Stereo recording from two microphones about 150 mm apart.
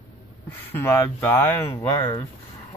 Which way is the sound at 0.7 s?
15° left (ahead or behind).